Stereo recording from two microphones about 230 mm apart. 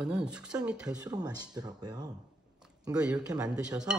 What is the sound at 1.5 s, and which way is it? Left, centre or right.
Speech, centre.